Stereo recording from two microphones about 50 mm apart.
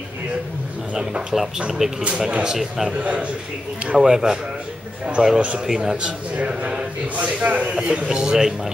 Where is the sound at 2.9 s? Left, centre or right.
Right.